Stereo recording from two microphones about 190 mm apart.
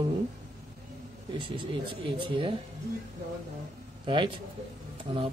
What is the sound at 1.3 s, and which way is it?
A woman's voice, 25° right (ahead or behind).